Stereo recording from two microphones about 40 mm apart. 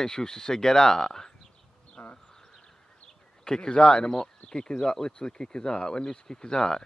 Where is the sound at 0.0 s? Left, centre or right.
Centre.